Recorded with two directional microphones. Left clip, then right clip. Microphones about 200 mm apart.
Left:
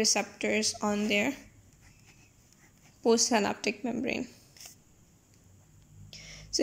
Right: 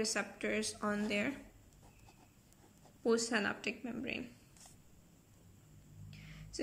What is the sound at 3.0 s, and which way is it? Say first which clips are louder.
A woman's voice: left 8 dB; 15° left (ahead or behind).